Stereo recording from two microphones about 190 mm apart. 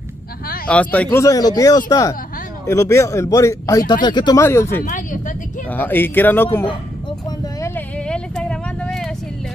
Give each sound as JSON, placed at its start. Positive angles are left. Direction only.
{"t": 0.7, "sound": "a man's voice", "side_deg": 5}
{"t": 4.4, "sound": "a man's voice", "side_deg": 15}
{"t": 4.8, "sound": "speech", "side_deg": 45}
{"t": 5.7, "sound": "a man's voice", "side_deg": 10}
{"t": 7.2, "sound": "a sound", "side_deg": 10}